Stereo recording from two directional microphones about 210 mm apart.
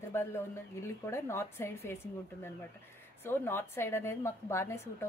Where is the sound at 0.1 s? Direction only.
10° left (ahead or behind).